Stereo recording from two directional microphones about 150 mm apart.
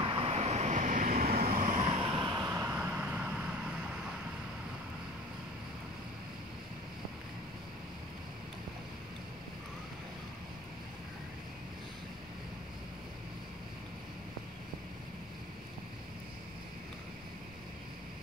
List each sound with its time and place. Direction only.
0.0 s vehicle: 40° right (ahead or behind); by 1.9 s 65° right (ahead or behind)
1.9 s vehicle: 40° right (ahead or behind); by 3.4 s 10° right (ahead or behind)